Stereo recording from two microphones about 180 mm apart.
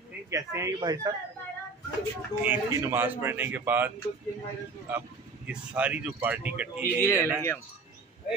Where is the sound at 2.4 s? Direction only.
15° right (ahead or behind).